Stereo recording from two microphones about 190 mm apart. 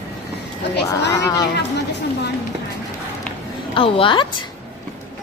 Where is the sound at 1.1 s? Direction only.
20° left (ahead or behind).